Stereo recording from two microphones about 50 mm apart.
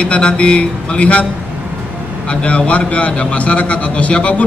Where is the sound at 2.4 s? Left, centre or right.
Left.